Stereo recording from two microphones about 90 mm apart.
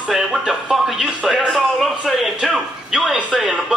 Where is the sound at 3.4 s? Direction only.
Centre (ahead or behind).